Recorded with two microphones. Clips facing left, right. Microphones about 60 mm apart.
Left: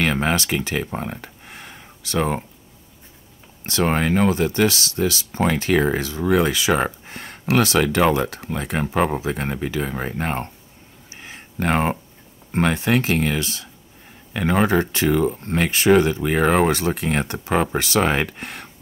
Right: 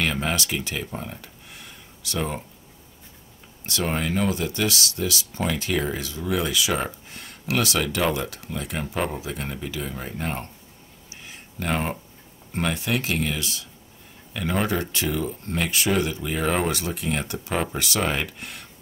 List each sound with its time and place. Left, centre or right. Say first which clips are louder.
0.0 s speech: left 5 dB; left
3.8 s speech: left 6 dB; left
11.2 s a sound: left 5 dB; left
12.5 s speech: left 6 dB; left